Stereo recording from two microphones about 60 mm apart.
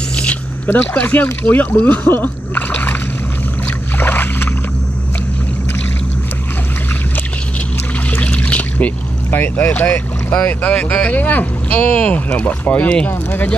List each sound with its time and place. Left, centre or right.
0.1 s a sound: centre
1.0 s speech: left
4.0 s boat: left
8.1 s speech: left
12.1 s speech: left
13.1 s speech: left